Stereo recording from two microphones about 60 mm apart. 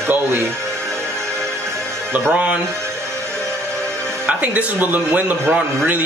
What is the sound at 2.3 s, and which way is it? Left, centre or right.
Speech, right.